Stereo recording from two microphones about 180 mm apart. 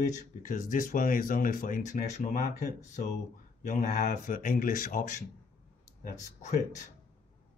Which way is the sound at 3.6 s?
45° left (ahead or behind).